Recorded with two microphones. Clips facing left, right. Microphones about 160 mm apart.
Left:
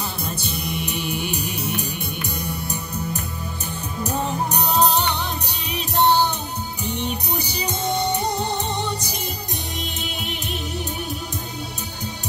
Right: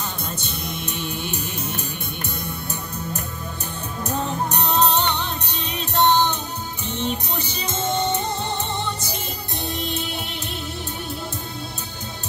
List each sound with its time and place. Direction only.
0.5 s music: 10° left (ahead or behind)